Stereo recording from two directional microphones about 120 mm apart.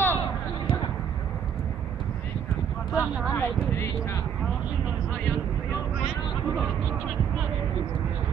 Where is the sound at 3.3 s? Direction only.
20° left (ahead or behind).